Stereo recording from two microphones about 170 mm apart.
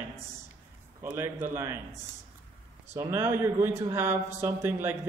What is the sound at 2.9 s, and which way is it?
A man's voice, 15° right (ahead or behind).